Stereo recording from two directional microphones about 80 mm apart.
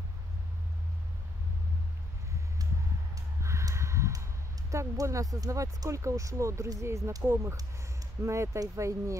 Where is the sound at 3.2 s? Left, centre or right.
Right.